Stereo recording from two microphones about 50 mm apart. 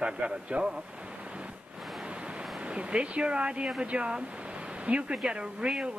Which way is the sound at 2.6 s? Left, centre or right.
Right.